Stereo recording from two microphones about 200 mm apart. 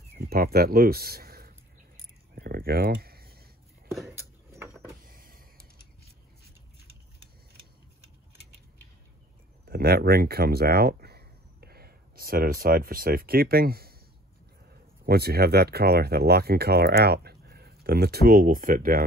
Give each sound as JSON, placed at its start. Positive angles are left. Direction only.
{"t": 0.2, "sound": "speech", "side_deg": -50}
{"t": 2.3, "sound": "a sound", "side_deg": -50}
{"t": 4.1, "sound": "a sound", "side_deg": -15}
{"t": 5.0, "sound": "power windows", "side_deg": -45}
{"t": 9.7, "sound": "speech", "side_deg": -50}
{"t": 15.0, "sound": "speech", "side_deg": -50}